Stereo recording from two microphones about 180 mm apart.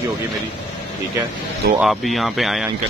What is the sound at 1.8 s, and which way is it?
Speech, centre (ahead or behind).